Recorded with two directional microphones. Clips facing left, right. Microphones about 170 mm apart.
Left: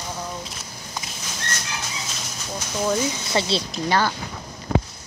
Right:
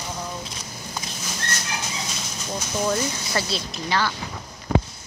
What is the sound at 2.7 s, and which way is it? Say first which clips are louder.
Speech: left 1 dB; 5° left (ahead or behind).